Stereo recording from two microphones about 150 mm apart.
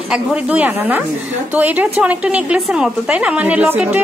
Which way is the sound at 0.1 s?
5° right (ahead or behind).